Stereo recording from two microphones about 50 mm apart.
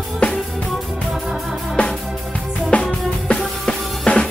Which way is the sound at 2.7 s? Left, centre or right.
Left.